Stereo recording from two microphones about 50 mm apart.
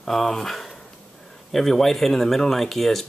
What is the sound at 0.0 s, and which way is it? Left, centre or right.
Speech, centre.